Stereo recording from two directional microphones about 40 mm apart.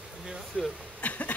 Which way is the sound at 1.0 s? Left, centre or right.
Left.